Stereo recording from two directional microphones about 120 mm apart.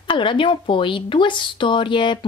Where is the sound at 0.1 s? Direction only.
40° left (ahead or behind).